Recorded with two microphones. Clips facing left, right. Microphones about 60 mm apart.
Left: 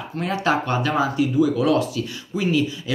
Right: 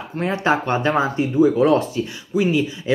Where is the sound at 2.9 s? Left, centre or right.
Right.